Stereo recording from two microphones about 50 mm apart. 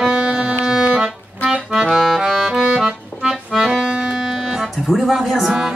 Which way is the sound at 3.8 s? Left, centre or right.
Right.